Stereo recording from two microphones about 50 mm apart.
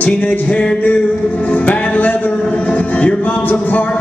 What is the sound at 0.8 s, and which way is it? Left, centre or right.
A man's voice, left.